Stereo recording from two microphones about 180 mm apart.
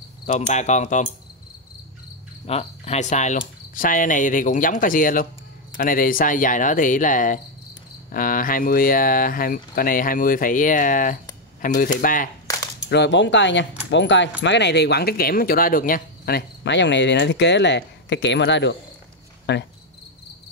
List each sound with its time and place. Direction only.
0.3 s speech: 40° left (ahead or behind)
2.4 s speech: 35° left (ahead or behind)
12.4 s a sound: 20° left (ahead or behind)
12.9 s speech: 75° left (ahead or behind); by 14.3 s 90° left
14.4 s speech: 75° left (ahead or behind)